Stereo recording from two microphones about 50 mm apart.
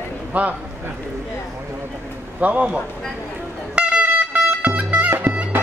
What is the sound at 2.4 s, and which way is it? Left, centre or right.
Speech, right.